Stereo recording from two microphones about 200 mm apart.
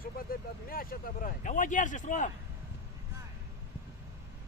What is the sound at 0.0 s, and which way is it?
Speech, 45° left (ahead or behind).